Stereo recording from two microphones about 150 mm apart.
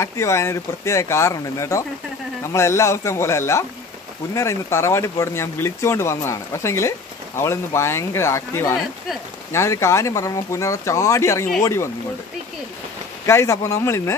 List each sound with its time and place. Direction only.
0.0 s speech: 20° left (ahead or behind)
13.3 s speech: 20° left (ahead or behind)